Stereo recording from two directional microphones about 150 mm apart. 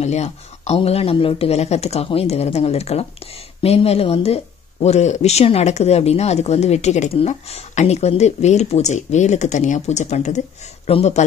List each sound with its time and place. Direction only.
0.0 s speech: 45° left (ahead or behind)